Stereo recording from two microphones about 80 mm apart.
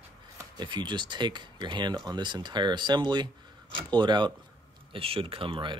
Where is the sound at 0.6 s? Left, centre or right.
Right.